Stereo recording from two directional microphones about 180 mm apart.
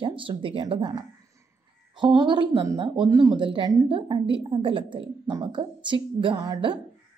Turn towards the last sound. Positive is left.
turn(degrees=-25)  # may be behind; listen again after turning